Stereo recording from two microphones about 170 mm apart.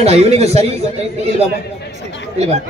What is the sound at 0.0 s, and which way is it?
Speech, 40° right (ahead or behind).